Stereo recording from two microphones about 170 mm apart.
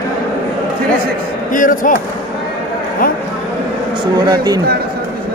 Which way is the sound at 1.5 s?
50° left (ahead or behind).